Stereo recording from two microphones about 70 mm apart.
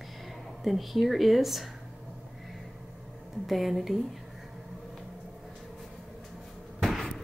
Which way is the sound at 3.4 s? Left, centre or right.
Centre.